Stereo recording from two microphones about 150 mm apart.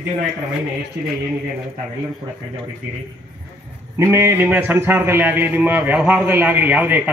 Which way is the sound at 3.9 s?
20° right (ahead or behind).